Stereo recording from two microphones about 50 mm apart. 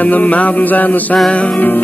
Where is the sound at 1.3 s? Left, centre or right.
Left.